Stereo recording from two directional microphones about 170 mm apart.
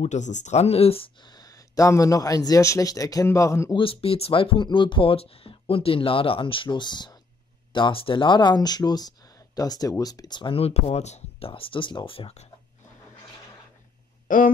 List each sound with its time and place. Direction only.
0.0 s speech: 45° left (ahead or behind); by 3.7 s 15° left (ahead or behind)
3.7 s speech: 30° left (ahead or behind)
14.2 s a sound: 55° left (ahead or behind)